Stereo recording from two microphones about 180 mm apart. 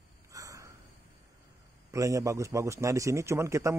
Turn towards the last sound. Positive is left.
turn(degrees=-15)  # may be behind; listen again after turning